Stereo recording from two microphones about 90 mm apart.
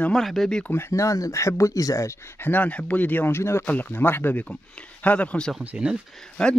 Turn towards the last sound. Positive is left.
turn(degrees=10)  # may be behind; listen again after turning